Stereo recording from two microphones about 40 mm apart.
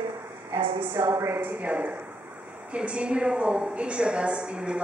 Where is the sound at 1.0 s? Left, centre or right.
Right.